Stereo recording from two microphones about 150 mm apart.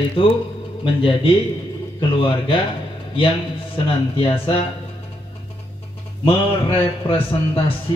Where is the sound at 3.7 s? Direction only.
35° left (ahead or behind).